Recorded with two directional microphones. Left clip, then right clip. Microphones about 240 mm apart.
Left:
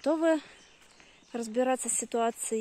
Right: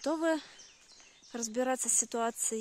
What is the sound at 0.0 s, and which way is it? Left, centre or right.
Speech, centre.